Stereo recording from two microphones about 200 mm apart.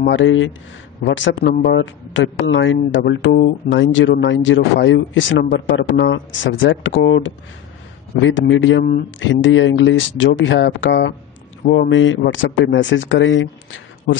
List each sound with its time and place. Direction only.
0.1 s speech: 70° left (ahead or behind)
11.6 s speech: 50° left (ahead or behind)
11.9 s speech: 75° left (ahead or behind)